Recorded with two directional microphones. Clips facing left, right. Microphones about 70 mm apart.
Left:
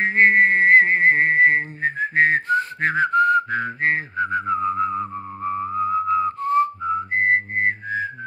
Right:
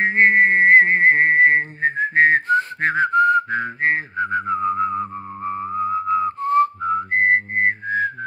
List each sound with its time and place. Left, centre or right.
0.0 s whistling: right
6.0 s whistling: right